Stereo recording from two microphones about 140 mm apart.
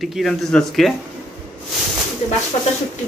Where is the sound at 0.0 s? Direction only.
Centre (ahead or behind).